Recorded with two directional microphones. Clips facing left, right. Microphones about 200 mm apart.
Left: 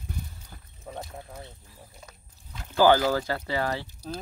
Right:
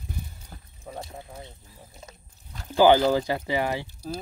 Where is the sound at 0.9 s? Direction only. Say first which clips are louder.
Right 1 dB; 10° right (ahead or behind).